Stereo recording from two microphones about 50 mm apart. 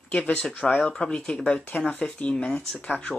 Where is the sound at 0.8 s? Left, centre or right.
Left.